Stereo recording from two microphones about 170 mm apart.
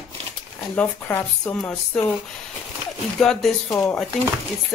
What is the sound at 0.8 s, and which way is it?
Speech, 10° left (ahead or behind).